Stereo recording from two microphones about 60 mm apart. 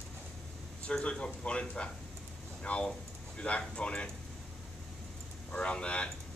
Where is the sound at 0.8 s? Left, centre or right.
Centre.